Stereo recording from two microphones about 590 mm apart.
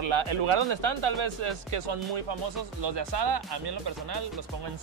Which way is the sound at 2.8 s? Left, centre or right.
Right.